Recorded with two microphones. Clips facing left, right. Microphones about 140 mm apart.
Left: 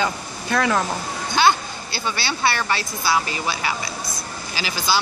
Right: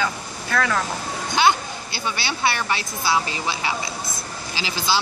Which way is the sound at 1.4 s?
15° right (ahead or behind).